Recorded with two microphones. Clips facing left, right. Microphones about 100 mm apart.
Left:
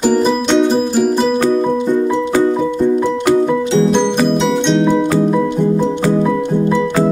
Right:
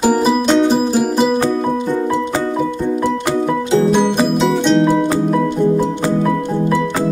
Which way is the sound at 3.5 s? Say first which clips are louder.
Left 1 dB; 5° right (ahead or behind).